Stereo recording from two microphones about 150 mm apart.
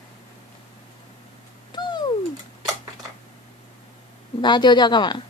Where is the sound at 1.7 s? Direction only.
30° left (ahead or behind).